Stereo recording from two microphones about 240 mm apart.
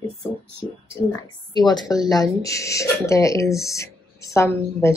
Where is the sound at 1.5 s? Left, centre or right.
Centre.